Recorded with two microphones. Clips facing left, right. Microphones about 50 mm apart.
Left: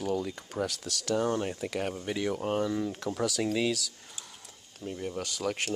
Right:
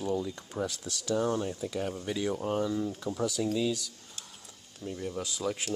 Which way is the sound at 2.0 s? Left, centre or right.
Left.